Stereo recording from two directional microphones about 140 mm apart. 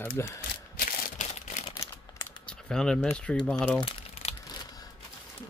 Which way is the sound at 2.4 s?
5° left (ahead or behind).